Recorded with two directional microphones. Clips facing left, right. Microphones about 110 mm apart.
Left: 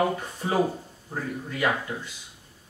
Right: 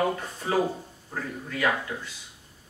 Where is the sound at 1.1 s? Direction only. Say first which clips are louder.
Left 2 dB; 20° left (ahead or behind).